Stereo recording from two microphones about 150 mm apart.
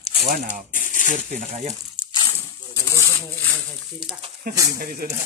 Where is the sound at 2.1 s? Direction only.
25° left (ahead or behind).